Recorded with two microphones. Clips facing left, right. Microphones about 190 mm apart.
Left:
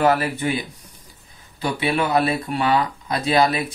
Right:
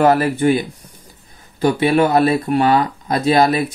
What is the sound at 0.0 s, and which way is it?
Speech, 45° right (ahead or behind).